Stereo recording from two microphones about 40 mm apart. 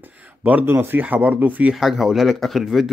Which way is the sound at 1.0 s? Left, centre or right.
Right.